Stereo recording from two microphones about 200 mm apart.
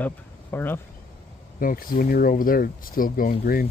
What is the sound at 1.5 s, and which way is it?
Speech, 45° left (ahead or behind).